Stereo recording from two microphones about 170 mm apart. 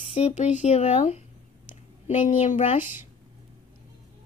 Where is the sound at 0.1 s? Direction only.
40° left (ahead or behind).